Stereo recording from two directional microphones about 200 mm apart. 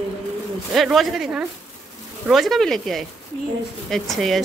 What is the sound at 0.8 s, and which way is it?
A woman's voice, centre (ahead or behind).